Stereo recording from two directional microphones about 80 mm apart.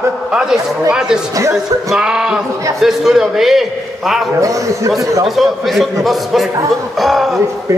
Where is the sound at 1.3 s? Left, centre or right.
Right.